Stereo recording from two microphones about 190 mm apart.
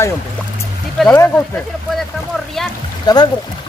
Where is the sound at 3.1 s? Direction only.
20° left (ahead or behind).